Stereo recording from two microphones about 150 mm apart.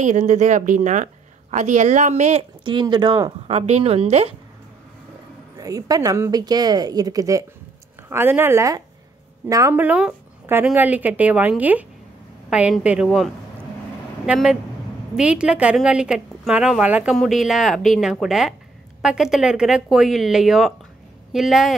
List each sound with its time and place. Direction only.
0.0 s a woman's voice: 55° right (ahead or behind)
2.6 s speech: 30° right (ahead or behind)
5.6 s a woman's voice: 25° right (ahead or behind); by 21.7 s centre (ahead or behind)